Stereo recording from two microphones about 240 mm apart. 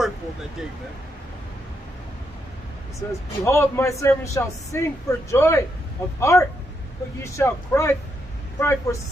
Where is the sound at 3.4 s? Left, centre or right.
Centre.